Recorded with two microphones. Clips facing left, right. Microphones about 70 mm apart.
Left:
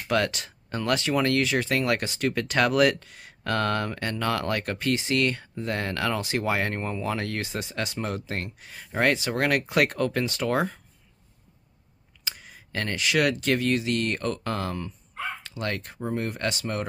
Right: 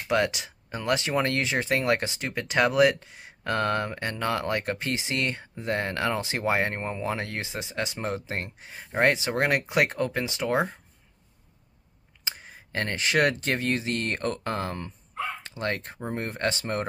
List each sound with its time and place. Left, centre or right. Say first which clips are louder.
0.1 s speech: even; centre
12.3 s speech: right 1 dB; right